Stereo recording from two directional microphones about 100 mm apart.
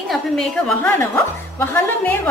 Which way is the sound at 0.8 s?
25° left (ahead or behind).